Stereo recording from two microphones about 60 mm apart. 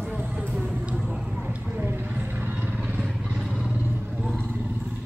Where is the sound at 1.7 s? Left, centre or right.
Right.